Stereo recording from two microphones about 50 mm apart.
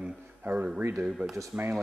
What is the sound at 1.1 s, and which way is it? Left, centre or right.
Speech, centre.